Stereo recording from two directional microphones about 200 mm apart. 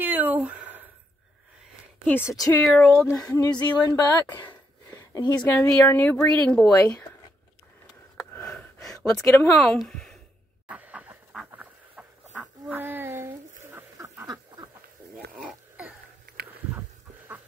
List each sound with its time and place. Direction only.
0.0 s a sound: 10° right (ahead or behind)
2.0 s speech: 10° left (ahead or behind)
2.7 s speech: 5° left (ahead or behind)
3.2 s speech: 15° left (ahead or behind)
5.4 s speech: 10° left (ahead or behind)
8.3 s gasp: 10° left (ahead or behind)
10.7 s chicken: 5° right (ahead or behind)
12.6 s a sound: 10° right (ahead or behind)
15.3 s a sound: 5° right (ahead or behind)